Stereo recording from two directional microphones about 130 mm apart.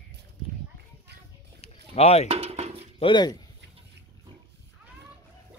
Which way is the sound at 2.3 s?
55° right (ahead or behind).